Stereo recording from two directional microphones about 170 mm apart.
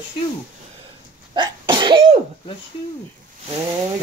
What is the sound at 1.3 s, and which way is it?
Cough, 25° right (ahead or behind).